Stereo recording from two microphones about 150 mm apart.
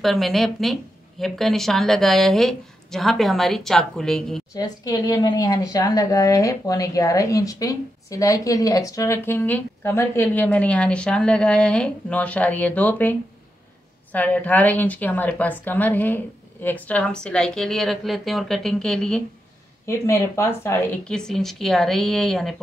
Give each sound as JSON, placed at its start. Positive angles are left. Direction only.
{"t": 0.0, "sound": "a woman's voice", "side_deg": 0}
{"t": 4.6, "sound": "a woman's voice", "side_deg": 25}
{"t": 14.1, "sound": "a woman's voice", "side_deg": 10}
{"t": 19.9, "sound": "a woman's voice", "side_deg": 15}
{"t": 21.0, "sound": "a woman's voice", "side_deg": 5}